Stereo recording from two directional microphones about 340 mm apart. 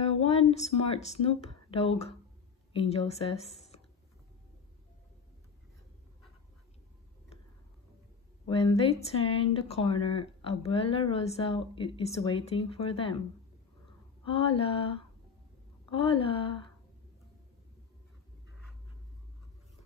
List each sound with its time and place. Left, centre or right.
0.2 s speech: centre
8.5 s speech: centre
14.2 s speech: centre